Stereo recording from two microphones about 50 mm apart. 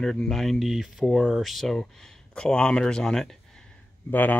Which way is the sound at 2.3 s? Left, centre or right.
Centre.